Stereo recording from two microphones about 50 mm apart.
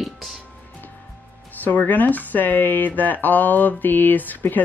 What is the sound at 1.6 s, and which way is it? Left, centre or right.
Speech, left.